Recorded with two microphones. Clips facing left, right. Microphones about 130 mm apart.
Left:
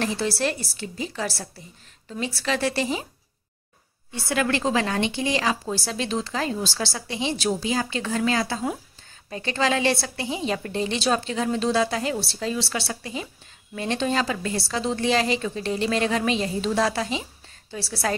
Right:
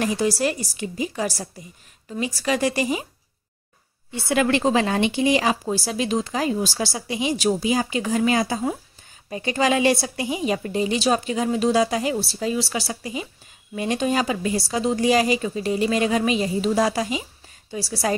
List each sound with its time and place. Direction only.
0.0 s a woman's voice: 15° right (ahead or behind)
4.1 s a woman's voice: 20° right (ahead or behind)